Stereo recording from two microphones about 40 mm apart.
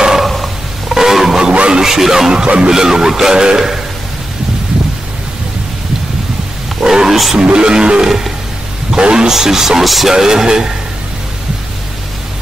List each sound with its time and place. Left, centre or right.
0.2 s purr: centre
0.8 s wild animals: centre
1.5 s music: right
1.8 s a man's voice: centre
2.4 s speech: right
2.7 s a man's voice: centre
6.8 s a sound: centre
7.4 s speech: right
9.3 s a man's voice: centre